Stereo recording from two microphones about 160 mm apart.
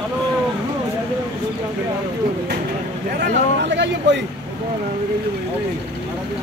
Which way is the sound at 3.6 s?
90° right.